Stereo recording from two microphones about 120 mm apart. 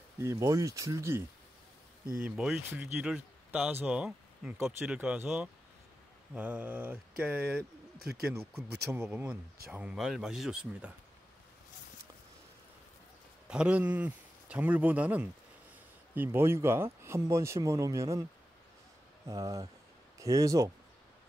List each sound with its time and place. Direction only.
0.2 s speech: 25° right (ahead or behind)
2.2 s speech: 5° right (ahead or behind)
4.6 s mantra: 5° right (ahead or behind)
9.7 s speech: 5° right (ahead or behind)
13.5 s speech: 10° right (ahead or behind); by 18.2 s 25° right (ahead or behind)
19.2 s speech: 30° right (ahead or behind)